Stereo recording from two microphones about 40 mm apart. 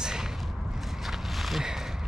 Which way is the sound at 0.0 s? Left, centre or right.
Centre.